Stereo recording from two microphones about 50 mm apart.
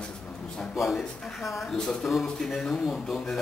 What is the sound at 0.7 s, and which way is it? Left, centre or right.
Speech, centre.